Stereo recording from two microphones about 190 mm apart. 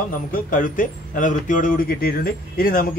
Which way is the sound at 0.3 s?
45° left (ahead or behind).